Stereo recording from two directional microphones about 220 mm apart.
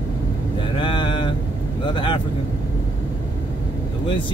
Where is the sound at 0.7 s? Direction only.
20° left (ahead or behind).